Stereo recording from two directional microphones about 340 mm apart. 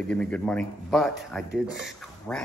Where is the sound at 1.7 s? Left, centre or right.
Centre.